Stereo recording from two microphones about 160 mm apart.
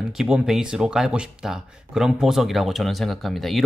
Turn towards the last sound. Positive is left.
turn(degrees=0)  # may be behind; listen again after turning